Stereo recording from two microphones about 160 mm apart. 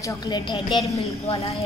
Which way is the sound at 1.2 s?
40° left (ahead or behind).